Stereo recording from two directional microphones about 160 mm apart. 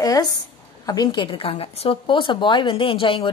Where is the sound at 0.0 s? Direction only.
20° left (ahead or behind).